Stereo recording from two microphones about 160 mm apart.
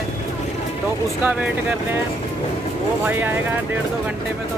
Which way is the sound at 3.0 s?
10° right (ahead or behind).